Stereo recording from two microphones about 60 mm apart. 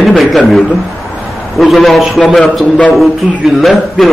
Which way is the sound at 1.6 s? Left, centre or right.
Centre.